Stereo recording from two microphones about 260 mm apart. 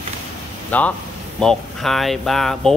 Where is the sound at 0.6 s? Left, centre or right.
Centre.